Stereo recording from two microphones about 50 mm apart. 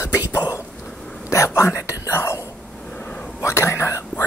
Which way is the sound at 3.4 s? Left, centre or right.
Left.